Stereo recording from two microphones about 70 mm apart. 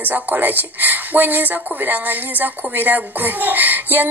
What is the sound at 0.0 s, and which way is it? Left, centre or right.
Speech, right.